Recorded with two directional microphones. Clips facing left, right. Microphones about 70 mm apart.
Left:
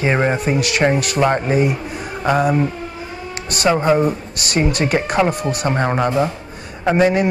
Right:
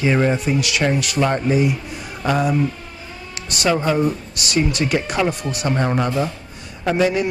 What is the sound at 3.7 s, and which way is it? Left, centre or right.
Speech, left.